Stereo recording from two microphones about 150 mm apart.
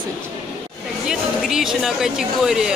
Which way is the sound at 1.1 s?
5° right (ahead or behind).